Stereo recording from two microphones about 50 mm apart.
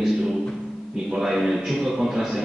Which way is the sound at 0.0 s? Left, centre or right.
Centre.